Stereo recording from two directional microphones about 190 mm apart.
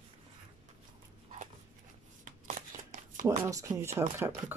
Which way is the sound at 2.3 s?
40° right (ahead or behind).